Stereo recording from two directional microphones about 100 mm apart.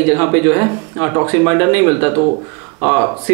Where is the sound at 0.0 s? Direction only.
15° right (ahead or behind).